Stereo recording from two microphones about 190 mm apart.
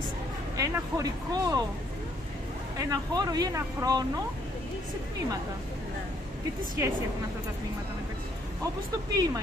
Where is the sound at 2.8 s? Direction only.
20° right (ahead or behind).